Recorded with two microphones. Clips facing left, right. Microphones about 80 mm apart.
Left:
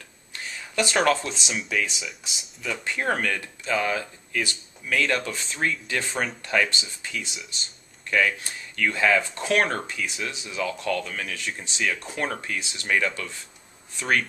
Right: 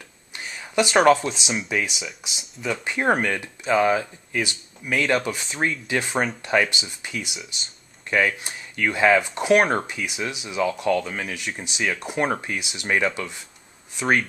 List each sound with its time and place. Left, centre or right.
0.5 s speech: centre
1.8 s speech: centre
2.0 s speech: centre
2.6 s speech: centre